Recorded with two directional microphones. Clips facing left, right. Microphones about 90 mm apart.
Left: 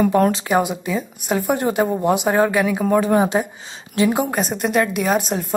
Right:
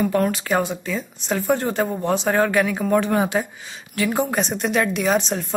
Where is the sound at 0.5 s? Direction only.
15° left (ahead or behind).